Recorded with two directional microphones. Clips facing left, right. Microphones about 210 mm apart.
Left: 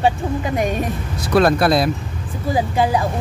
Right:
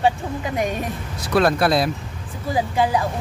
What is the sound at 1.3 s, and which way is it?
Speech, 40° left (ahead or behind).